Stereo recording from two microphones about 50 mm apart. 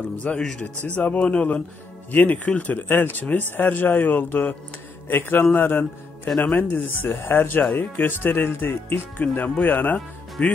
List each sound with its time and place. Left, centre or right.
0.3 s speech: centre
0.8 s speech: left
2.9 s speech: left
10.4 s speech: left